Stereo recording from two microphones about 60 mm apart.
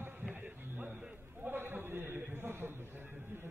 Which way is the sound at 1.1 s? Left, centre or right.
Right.